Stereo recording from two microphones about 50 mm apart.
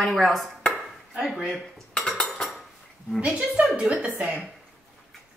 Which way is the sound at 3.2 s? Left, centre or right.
Right.